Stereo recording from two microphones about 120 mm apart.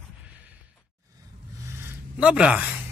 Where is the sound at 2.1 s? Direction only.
10° right (ahead or behind).